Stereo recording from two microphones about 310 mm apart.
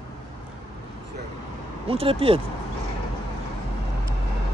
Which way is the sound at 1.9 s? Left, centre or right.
Centre.